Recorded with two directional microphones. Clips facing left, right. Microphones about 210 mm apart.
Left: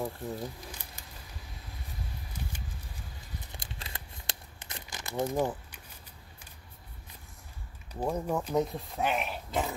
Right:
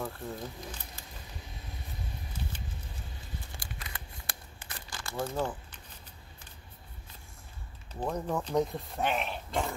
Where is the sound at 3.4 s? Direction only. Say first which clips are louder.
Left 1 dB; 25° left (ahead or behind).